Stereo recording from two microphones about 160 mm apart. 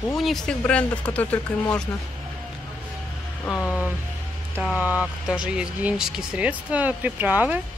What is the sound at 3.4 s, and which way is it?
Speech, 15° left (ahead or behind).